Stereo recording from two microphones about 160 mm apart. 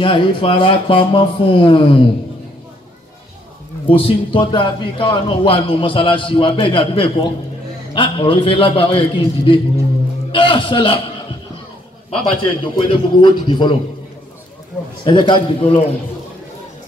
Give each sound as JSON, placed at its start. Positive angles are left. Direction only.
{"t": 0.0, "sound": "a man's voice", "side_deg": 35}
{"t": 3.9, "sound": "a man's voice", "side_deg": 35}
{"t": 12.4, "sound": "a man's voice", "side_deg": 30}
{"t": 15.0, "sound": "a man's voice", "side_deg": 30}